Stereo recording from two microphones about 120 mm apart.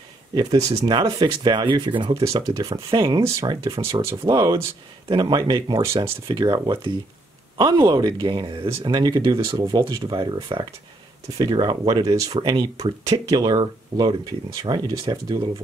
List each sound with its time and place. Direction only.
0.3 s speech: 35° right (ahead or behind)
2.2 s speech: 30° right (ahead or behind)
4.3 s speech: 35° right (ahead or behind)